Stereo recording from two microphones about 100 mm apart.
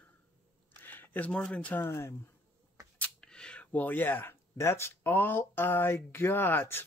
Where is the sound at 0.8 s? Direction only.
20° left (ahead or behind).